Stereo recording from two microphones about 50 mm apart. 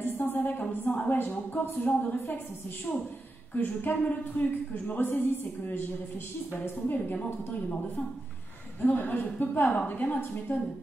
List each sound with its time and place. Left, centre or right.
0.2 s a woman's voice: left
1.9 s a woman's voice: left
2.9 s a man's voice: centre
3.5 s speech: left
8.8 s speech: left